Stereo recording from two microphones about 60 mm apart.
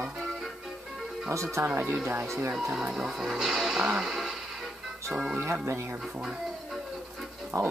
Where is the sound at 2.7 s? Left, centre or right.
Centre.